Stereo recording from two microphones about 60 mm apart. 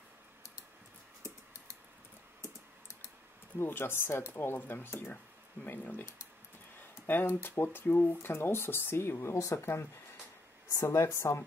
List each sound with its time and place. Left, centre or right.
2.4 s typing: left
3.5 s speech: left
7.1 s a woman's voice: left